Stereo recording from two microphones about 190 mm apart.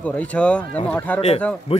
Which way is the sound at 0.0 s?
5° left (ahead or behind).